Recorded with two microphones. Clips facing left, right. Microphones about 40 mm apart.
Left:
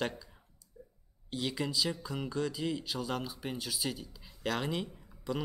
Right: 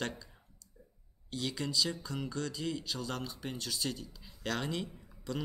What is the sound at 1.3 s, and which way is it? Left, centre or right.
Speech, centre.